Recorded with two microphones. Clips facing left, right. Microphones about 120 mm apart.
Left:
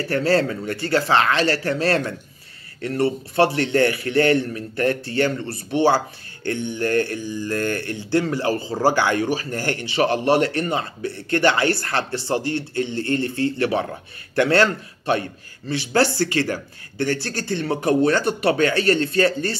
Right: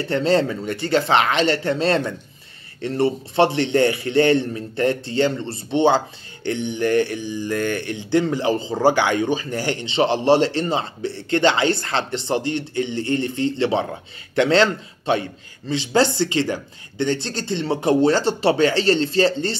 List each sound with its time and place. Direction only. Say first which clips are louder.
0.0 s a man's voice: right 1 dB; 20° right (ahead or behind)